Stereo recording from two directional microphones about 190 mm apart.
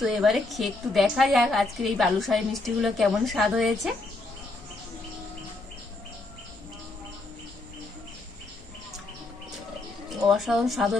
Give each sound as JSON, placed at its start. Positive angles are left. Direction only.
{"t": 0.0, "sound": "a woman's voice", "side_deg": 0}
{"t": 10.0, "sound": "a woman's voice", "side_deg": 0}